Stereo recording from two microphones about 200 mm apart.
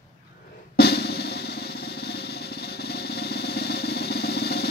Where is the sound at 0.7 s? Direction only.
55° left (ahead or behind).